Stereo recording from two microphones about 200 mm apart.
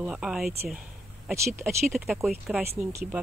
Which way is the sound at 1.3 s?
15° right (ahead or behind).